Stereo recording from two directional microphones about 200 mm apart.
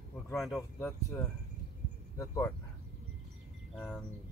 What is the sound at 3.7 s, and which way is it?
Speech, 5° left (ahead or behind).